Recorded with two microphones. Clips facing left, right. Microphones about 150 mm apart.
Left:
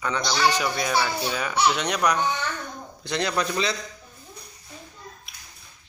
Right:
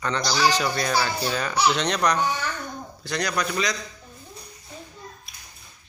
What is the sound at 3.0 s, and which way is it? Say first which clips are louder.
Speech: left 1 dB; 20° left (ahead or behind).